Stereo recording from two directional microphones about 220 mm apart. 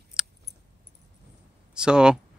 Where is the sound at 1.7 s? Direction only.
5° right (ahead or behind).